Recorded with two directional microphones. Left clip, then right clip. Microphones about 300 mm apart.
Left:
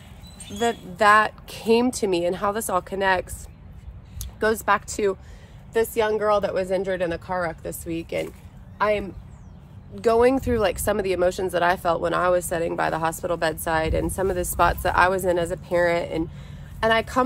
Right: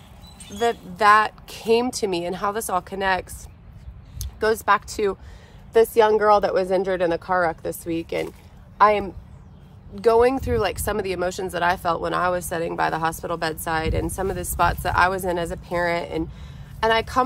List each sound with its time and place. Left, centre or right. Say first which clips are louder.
0.5 s a woman's voice: right 2 dB; centre